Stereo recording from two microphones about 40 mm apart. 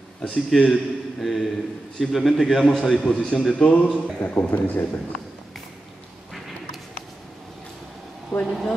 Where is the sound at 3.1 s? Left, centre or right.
Left.